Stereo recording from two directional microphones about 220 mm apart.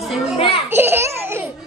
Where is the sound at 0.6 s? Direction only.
10° right (ahead or behind).